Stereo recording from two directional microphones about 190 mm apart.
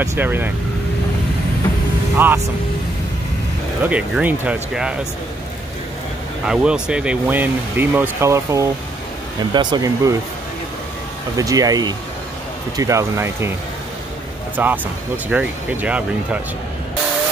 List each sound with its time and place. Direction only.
0.0 s speech: 15° right (ahead or behind)
2.1 s speech: 10° right (ahead or behind)
3.8 s speech: 5° right (ahead or behind)
6.4 s speech: 5° right (ahead or behind)
11.3 s speech: 20° right (ahead or behind)
14.6 s speech: 10° right (ahead or behind)